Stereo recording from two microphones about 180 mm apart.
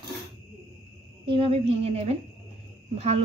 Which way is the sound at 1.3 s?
30° right (ahead or behind).